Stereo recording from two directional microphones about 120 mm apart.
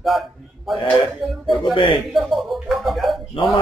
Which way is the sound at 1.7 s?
45° left (ahead or behind).